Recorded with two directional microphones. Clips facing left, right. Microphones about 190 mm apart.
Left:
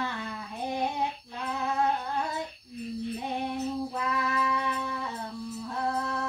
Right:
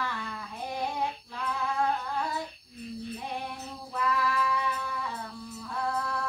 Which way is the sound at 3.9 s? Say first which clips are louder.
Right 1 dB; 20° left (ahead or behind).